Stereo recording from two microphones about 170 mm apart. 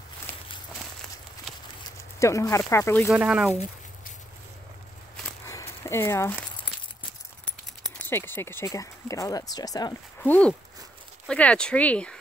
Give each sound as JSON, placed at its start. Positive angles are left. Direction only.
{"t": 0.3, "sound": "walk", "side_deg": 15}
{"t": 1.5, "sound": "a sound", "side_deg": 0}
{"t": 1.9, "sound": "a sound", "side_deg": 20}
{"t": 2.7, "sound": "speech", "side_deg": 15}
{"t": 3.1, "sound": "speech", "side_deg": -10}
{"t": 5.9, "sound": "speech", "side_deg": 15}
{"t": 8.1, "sound": "speech", "side_deg": 15}
{"t": 10.2, "sound": "speech", "side_deg": 10}